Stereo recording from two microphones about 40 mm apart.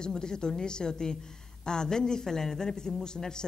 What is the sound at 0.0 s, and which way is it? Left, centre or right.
A woman's voice, centre.